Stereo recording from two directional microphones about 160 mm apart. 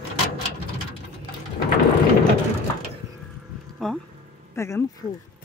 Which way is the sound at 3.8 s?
Centre (ahead or behind).